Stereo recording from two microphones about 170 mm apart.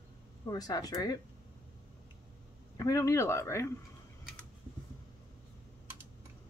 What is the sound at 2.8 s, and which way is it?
Speech, 20° left (ahead or behind).